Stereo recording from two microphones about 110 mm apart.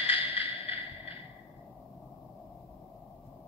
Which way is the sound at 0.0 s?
15° right (ahead or behind).